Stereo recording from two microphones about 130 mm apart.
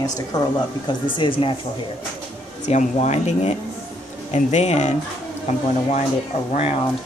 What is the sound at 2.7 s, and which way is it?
Speech, 60° left (ahead or behind).